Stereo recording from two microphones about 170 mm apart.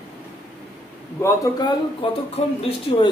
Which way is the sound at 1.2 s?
20° left (ahead or behind).